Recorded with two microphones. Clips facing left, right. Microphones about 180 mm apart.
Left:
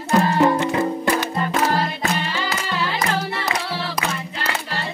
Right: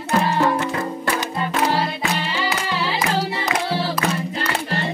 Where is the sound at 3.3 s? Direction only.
20° right (ahead or behind).